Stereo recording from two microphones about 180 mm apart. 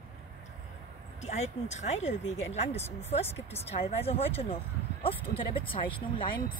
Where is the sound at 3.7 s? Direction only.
35° left (ahead or behind).